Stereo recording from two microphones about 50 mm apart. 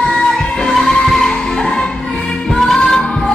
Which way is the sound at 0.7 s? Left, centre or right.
Centre.